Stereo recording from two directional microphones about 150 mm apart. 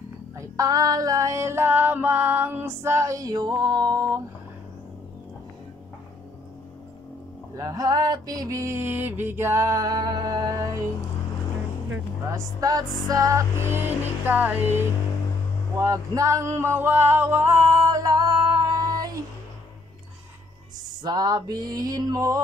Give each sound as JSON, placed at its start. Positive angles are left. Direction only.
{"t": 0.4, "sound": "music", "side_deg": -25}
{"t": 7.5, "sound": "music", "side_deg": -25}
{"t": 11.9, "sound": "music", "side_deg": -20}
{"t": 21.0, "sound": "music", "side_deg": -30}